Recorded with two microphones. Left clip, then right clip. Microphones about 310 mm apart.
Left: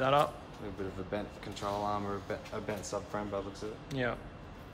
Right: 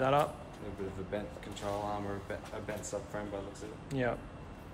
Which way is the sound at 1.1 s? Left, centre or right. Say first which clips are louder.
Left 1 dB; left.